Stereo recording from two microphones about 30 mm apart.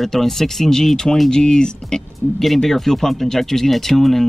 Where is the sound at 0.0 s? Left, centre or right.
Centre.